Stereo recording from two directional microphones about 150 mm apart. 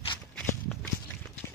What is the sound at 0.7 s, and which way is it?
Walk, 5° left (ahead or behind).